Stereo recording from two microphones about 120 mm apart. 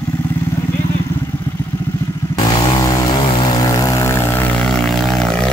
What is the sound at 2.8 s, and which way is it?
Vehicle, 35° left (ahead or behind).